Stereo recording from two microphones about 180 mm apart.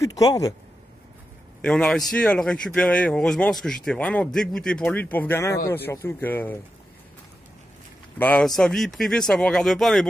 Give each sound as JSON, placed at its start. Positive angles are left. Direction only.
{"t": 0.0, "sound": "speech", "side_deg": 20}
{"t": 1.6, "sound": "speech", "side_deg": 5}
{"t": 8.2, "sound": "speech", "side_deg": 5}